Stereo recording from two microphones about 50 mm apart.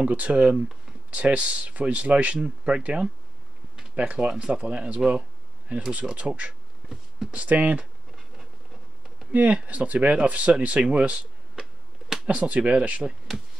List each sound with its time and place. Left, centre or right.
0.0 s speech: right
9.3 s speech: right
12.3 s speech: right